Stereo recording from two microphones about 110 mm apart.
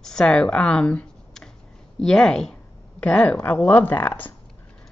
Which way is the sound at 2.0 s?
5° left (ahead or behind).